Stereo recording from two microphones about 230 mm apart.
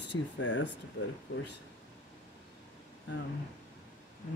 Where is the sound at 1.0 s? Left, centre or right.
Left.